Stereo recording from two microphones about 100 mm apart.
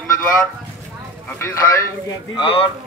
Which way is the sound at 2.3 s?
60° left (ahead or behind).